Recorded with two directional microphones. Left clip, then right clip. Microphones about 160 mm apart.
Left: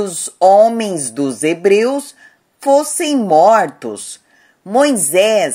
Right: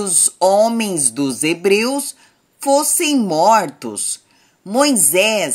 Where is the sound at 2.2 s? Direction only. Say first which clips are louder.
Left 3 dB; 40° right (ahead or behind).